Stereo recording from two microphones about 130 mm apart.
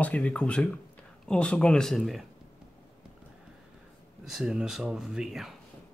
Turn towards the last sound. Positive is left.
turn(degrees=0)  # may be behind; listen again after turning